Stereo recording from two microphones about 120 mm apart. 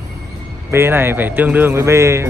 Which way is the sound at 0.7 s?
20° right (ahead or behind).